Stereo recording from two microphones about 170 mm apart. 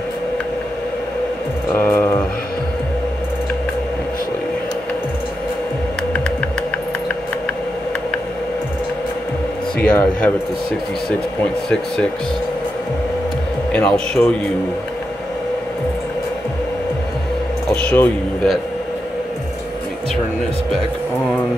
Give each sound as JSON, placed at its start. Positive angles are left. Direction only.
{"t": 1.8, "sound": "mantra", "side_deg": 5}
{"t": 9.8, "sound": "speech", "side_deg": 10}
{"t": 13.7, "sound": "a man's voice", "side_deg": 5}
{"t": 17.7, "sound": "a man's voice", "side_deg": 5}